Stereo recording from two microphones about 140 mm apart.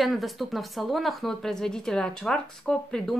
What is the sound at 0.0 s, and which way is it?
A woman's voice, centre (ahead or behind).